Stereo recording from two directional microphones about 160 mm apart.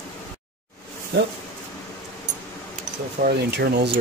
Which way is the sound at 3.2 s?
90° right.